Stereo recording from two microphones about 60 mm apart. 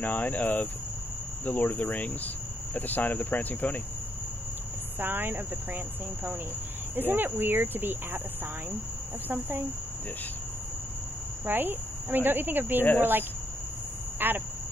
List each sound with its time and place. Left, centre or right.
0.0 s cricket: left
4.9 s speech: right
7.0 s speech: right
9.3 s speech: right
11.4 s speech: right
14.2 s speech: right